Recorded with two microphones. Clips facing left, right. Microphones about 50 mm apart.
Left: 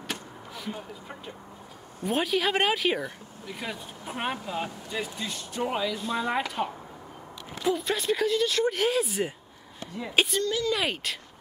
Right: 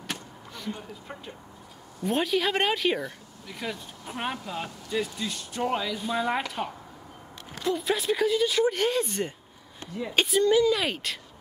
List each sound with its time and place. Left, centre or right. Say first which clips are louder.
0.1 s vehicle: even; centre
2.0 s speech: even; centre
10.4 s speech: right 7 dB; centre
10.7 s speech: right 1 dB; centre